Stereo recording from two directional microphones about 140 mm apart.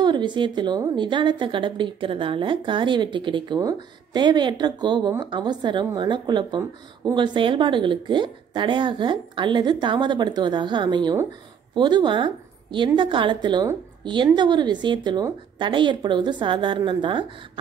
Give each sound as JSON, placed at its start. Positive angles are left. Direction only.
{"t": 0.0, "sound": "a woman's voice", "side_deg": -35}